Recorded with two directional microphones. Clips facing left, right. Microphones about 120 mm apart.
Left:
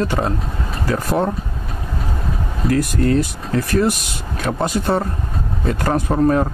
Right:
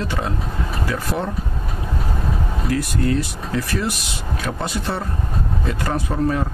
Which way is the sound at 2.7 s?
45° left (ahead or behind).